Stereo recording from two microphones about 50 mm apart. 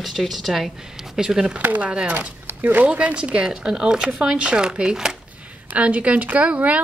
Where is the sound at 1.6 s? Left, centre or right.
Right.